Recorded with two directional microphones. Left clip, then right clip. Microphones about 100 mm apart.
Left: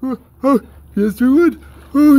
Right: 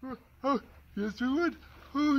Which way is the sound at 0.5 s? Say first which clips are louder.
Left 15 dB; 45° left (ahead or behind).